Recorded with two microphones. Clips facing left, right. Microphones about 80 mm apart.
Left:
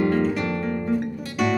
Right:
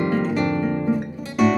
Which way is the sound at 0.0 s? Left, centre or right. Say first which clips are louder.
Even; centre.